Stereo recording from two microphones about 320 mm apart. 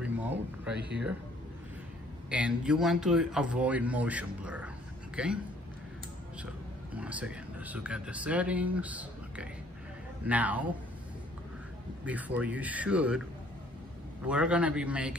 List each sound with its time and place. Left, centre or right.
0.7 s speech: right
2.2 s a man's voice: centre
6.4 s speech: centre
12.0 s speech: centre
14.2 s speech: centre